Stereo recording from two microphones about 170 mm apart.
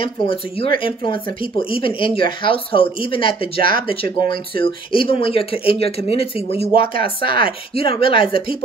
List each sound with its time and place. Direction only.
0.0 s speech: 30° left (ahead or behind)
3.5 s speech: 55° right (ahead or behind)
3.8 s speech: 30° left (ahead or behind)